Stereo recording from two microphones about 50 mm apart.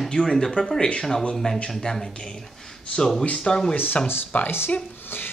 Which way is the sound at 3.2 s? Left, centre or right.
Centre.